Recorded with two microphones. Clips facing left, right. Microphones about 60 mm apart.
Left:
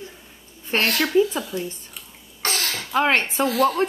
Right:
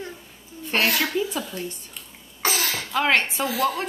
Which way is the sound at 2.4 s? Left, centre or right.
Centre.